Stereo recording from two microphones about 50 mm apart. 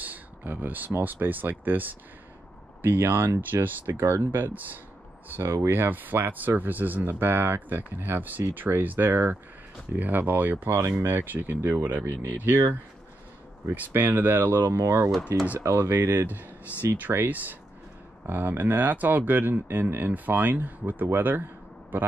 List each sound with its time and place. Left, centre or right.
0.0 s speech: right
3.5 s speech: right
3.9 s speech: right
5.4 s speech: right
5.7 s speech: right
13.7 s speech: right
15.3 s speech: right
15.9 s speech: right
18.2 s speech: right